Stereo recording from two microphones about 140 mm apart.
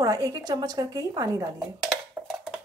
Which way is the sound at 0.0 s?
25° right (ahead or behind).